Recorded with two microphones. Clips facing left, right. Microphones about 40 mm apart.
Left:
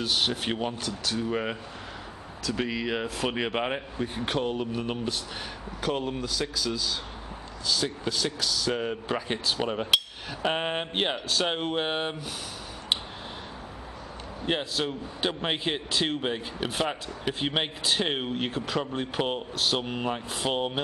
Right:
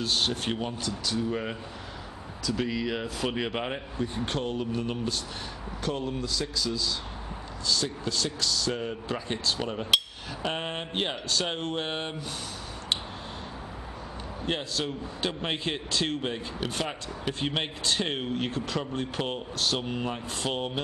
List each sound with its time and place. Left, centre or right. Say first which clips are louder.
0.0 s a man's voice: left 1 dB; centre
14.4 s a man's voice: left 2 dB; centre